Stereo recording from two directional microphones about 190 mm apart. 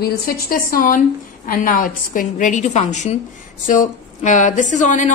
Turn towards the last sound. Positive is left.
turn(degrees=40)  # may be behind; listen again after turning